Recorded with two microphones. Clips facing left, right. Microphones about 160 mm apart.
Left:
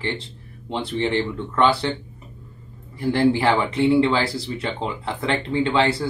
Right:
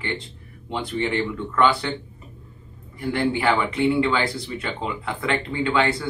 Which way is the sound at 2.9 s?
30° left (ahead or behind).